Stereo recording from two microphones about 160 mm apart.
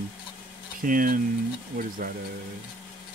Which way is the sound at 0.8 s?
60° right (ahead or behind).